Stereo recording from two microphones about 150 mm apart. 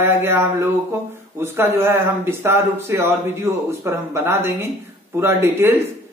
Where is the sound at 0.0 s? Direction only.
15° right (ahead or behind).